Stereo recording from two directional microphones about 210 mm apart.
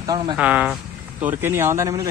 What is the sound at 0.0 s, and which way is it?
Speech, 15° right (ahead or behind).